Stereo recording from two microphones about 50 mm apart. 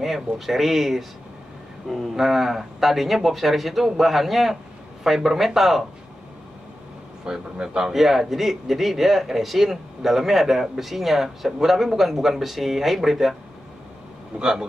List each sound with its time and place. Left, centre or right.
0.0 s a man's voice: centre
7.2 s a man's voice: centre
14.4 s a man's voice: centre